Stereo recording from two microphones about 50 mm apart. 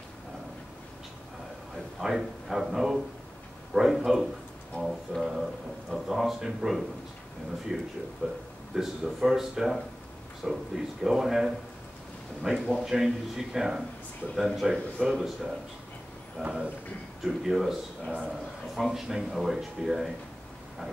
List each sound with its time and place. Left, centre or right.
2.0 s speech: centre
8.2 s a man's voice: left
8.7 s speech: centre
16.4 s speech: right
17.2 s speech: centre